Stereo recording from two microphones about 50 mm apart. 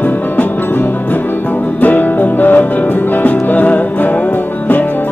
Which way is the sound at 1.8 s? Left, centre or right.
Left.